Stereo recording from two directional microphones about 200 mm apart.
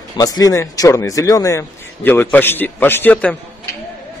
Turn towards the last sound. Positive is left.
turn(degrees=10)  # may be behind; listen again after turning